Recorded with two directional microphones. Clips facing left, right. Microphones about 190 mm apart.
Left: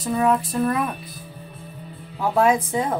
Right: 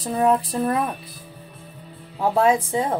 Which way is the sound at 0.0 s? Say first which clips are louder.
Right 1 dB; 35° right (ahead or behind).